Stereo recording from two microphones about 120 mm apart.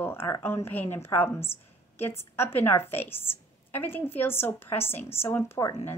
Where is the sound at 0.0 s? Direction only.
20° left (ahead or behind).